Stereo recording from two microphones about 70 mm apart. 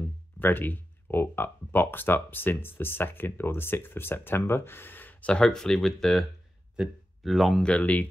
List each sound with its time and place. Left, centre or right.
0.0 s speech: left
5.3 s speech: centre
7.6 s speech: centre